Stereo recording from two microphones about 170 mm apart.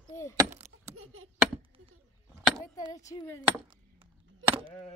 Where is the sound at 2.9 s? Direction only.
20° left (ahead or behind).